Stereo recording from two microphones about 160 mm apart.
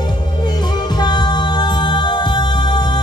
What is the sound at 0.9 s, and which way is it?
Music, 25° left (ahead or behind).